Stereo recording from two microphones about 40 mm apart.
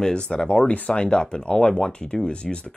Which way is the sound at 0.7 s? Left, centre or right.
Left.